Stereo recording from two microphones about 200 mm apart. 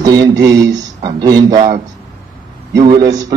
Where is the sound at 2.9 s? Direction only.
20° right (ahead or behind).